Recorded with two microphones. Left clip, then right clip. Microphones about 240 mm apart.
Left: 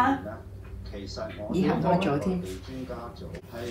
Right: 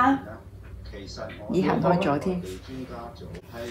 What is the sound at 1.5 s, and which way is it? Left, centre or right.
Speech, right.